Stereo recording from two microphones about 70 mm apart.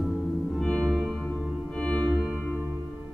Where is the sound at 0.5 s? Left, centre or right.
Centre.